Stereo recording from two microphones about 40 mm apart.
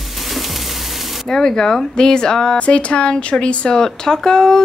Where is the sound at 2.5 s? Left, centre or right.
Left.